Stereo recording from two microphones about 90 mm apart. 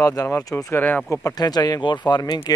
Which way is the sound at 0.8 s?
20° left (ahead or behind).